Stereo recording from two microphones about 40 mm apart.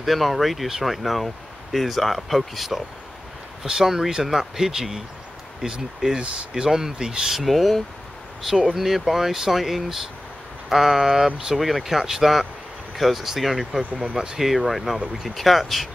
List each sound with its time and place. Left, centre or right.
0.0 s speech: centre
7.3 s speech: centre